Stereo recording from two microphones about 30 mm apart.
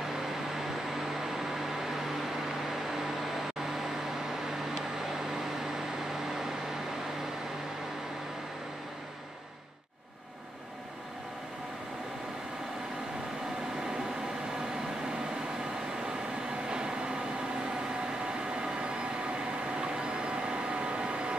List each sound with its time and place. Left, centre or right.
0.6 s vehicle: centre
6.3 s microwave oven: centre
16.6 s vehicle: right
18.2 s vehicle: right